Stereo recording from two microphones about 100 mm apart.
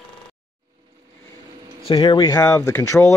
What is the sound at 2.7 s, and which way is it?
Speech, 25° left (ahead or behind).